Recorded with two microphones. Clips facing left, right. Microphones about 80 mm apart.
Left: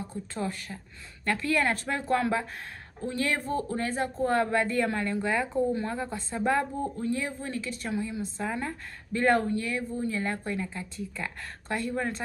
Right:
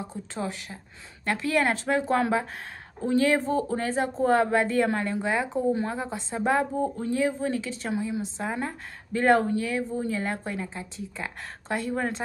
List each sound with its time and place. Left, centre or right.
0.4 s speech: centre; by 4.3 s right
4.3 s speech: centre